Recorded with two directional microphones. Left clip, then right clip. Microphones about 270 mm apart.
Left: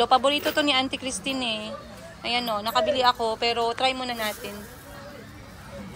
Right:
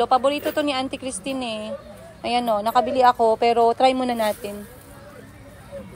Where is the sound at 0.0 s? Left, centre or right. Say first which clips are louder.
Right 1 dB; centre.